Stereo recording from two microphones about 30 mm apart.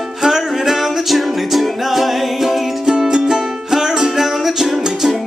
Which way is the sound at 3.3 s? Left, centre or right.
Centre.